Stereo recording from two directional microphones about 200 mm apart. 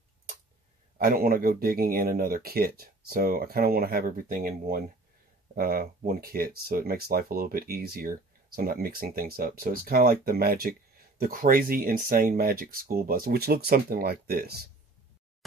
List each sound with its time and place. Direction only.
0.9 s speech: 45° right (ahead or behind)